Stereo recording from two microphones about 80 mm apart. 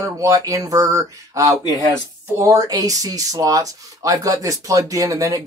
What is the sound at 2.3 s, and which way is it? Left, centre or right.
Speech, right.